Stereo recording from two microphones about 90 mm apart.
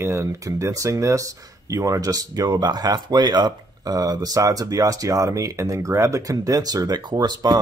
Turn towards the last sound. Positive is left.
turn(degrees=-50)  # may be behind; listen again after turning